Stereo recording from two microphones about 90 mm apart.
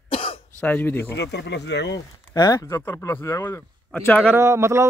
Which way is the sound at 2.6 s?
25° left (ahead or behind).